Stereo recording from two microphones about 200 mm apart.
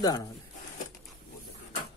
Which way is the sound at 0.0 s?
20° left (ahead or behind).